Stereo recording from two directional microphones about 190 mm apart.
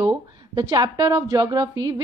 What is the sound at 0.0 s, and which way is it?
A woman's voice, 20° right (ahead or behind).